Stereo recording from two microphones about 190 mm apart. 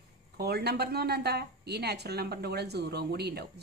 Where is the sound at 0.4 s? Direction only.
55° right (ahead or behind).